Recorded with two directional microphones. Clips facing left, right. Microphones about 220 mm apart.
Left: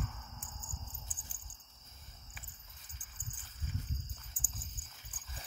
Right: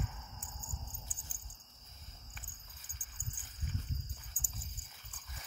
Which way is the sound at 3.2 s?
15° right (ahead or behind).